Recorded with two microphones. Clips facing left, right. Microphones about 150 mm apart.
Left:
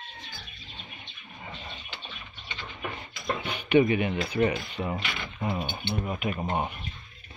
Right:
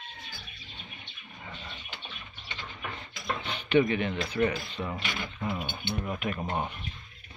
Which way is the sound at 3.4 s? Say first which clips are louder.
Left 3 dB; 10° left (ahead or behind).